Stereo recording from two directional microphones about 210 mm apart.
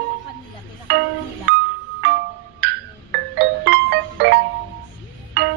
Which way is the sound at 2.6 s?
55° right (ahead or behind).